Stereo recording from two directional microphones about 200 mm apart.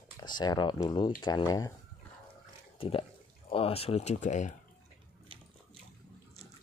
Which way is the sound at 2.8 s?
30° left (ahead or behind).